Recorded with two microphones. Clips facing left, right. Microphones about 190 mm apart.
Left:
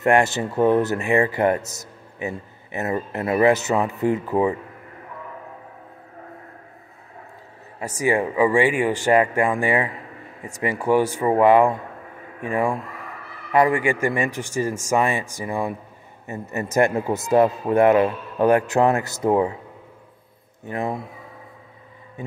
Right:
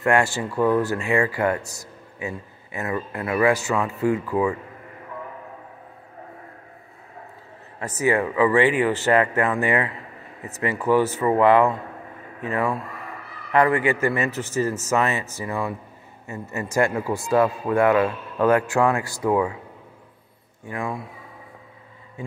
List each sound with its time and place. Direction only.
0.0 s speech: 20° left (ahead or behind)
7.8 s a man's voice: 15° left (ahead or behind)
20.6 s speech: 25° left (ahead or behind)